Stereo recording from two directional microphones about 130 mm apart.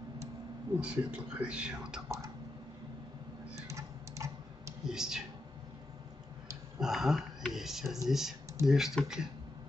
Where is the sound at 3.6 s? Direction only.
20° right (ahead or behind).